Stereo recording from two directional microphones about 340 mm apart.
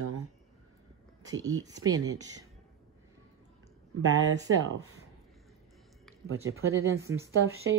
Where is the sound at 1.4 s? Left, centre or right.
Centre.